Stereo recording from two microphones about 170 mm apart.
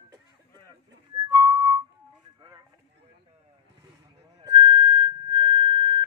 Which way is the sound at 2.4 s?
25° right (ahead or behind).